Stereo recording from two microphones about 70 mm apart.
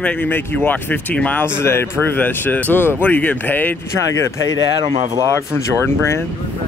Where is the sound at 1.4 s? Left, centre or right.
Left.